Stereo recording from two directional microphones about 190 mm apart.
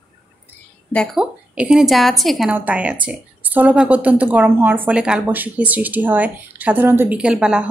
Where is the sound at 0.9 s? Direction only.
Centre (ahead or behind).